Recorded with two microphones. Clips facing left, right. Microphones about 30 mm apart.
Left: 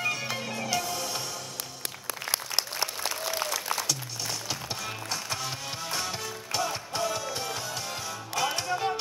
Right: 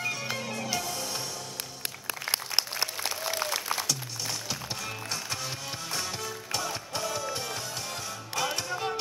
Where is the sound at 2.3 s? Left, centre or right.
Right.